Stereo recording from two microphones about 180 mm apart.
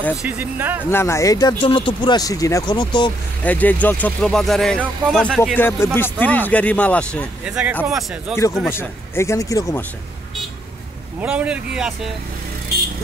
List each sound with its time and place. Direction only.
0.2 s speech: 10° right (ahead or behind)
0.8 s speech: 15° left (ahead or behind)
3.4 s speech: 10° left (ahead or behind)
5.6 s speech: 10° left (ahead or behind)
7.4 s speech: 5° right (ahead or behind)
8.6 s speech: 15° left (ahead or behind)
11.1 s speech: 5° right (ahead or behind)